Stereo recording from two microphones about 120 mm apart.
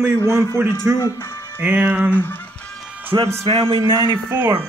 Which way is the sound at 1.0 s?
25° left (ahead or behind).